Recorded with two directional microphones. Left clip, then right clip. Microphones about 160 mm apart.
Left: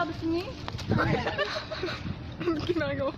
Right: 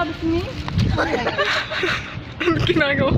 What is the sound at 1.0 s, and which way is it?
Speech, 60° right (ahead or behind).